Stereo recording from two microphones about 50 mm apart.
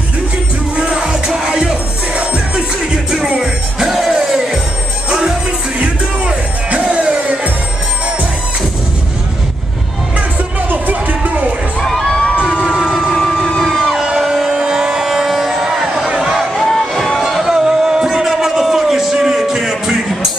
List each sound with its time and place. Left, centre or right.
0.7 s music: centre
5.8 s music: right
10.7 s music: right
11.8 s crowd: centre
12.6 s emergency vehicle: centre
13.1 s vehicle: centre
14.0 s a sound: centre
16.1 s music: centre
16.5 s music: centre
17.2 s a sound: centre